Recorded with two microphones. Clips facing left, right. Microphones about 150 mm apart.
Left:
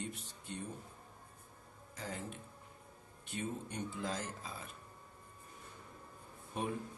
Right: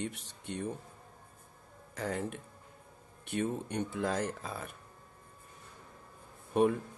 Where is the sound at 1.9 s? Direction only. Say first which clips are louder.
Right 9 dB; 65° right (ahead or behind).